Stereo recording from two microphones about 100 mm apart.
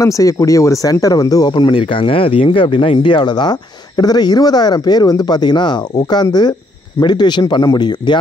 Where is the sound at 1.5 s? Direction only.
55° left (ahead or behind).